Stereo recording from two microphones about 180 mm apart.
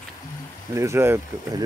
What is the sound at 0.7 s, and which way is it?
Speech, 15° right (ahead or behind).